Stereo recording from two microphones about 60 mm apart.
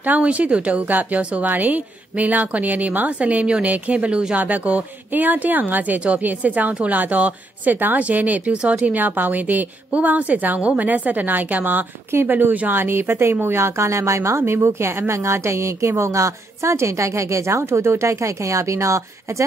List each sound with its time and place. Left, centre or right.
0.0 s a woman's voice: right